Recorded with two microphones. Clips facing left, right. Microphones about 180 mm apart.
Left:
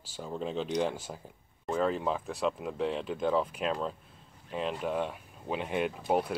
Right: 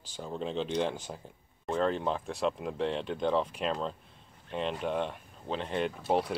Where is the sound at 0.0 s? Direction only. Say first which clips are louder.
Even; 5° left (ahead or behind).